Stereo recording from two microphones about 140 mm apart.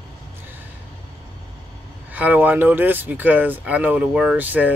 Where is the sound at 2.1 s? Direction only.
10° right (ahead or behind).